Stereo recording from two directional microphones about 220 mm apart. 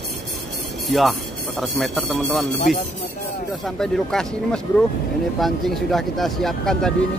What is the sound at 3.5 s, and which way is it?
Speech, centre (ahead or behind).